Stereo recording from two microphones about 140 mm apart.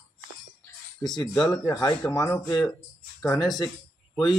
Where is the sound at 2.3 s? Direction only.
5° left (ahead or behind).